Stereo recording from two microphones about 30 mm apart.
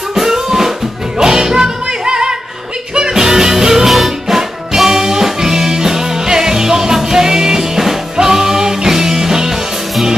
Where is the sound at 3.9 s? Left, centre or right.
Centre.